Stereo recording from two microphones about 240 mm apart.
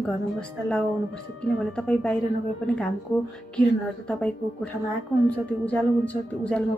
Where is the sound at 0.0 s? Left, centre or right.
Centre.